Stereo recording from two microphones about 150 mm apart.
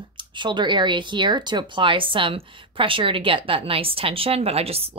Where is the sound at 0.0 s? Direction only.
30° right (ahead or behind).